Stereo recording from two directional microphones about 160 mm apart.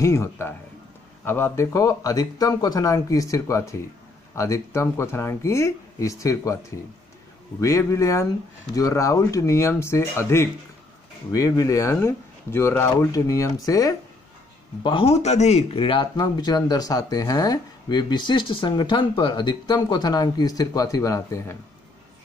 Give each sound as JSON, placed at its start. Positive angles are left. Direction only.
{"t": 0.0, "sound": "speech", "side_deg": 15}
{"t": 7.6, "sound": "speech", "side_deg": 20}